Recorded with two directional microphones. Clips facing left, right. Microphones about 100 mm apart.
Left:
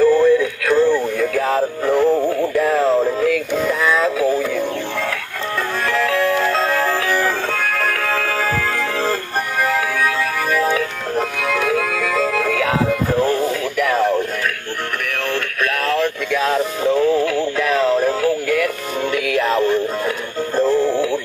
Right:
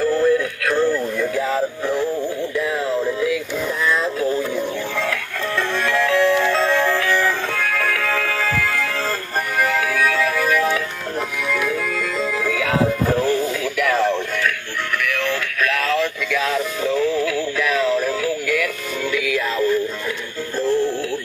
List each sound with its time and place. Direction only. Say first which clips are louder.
1.3 s speech: left 3 dB; 60° left (ahead or behind)
2.2 s synthetic singing: left 5 dB; 60° left (ahead or behind)
2.9 s music: left 4 dB; 35° left (ahead or behind)
3.3 s synthetic singing: left 4 dB; 55° left (ahead or behind)
4.0 s speech: left 4 dB; 90° left
5.9 s music: right 1 dB; 35° left (ahead or behind)
10.6 s music: left 2 dB; 25° left (ahead or behind)
11.7 s music: left 4 dB; 90° left
12.3 s music: left 3 dB; 55° left (ahead or behind)
13.2 s radio: left 2 dB; 35° left (ahead or behind)
15.0 s synthetic singing: even; 45° left (ahead or behind)
16.4 s music: left 6 dB; 35° left (ahead or behind)
16.9 s synthetic singing: left 4 dB; 50° left (ahead or behind)
19.1 s music: left 4 dB; 55° left (ahead or behind)